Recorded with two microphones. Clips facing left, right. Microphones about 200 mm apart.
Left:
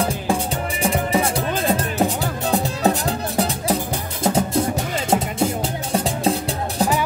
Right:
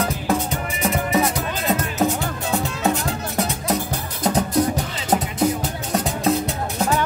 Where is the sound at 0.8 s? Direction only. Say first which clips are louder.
Even; 30° left (ahead or behind).